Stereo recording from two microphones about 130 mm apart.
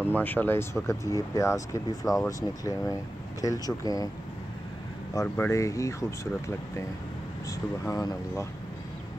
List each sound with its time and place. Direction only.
0.1 s speech: 15° left (ahead or behind); by 4.1 s 30° left (ahead or behind)
5.2 s speech: 20° left (ahead or behind)